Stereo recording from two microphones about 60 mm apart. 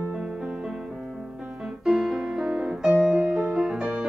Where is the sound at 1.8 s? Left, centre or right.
Centre.